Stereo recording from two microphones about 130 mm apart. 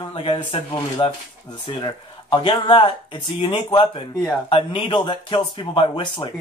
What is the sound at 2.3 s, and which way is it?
Speech, 40° left (ahead or behind).